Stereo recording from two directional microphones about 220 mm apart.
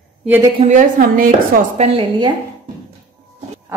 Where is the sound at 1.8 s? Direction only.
20° right (ahead or behind).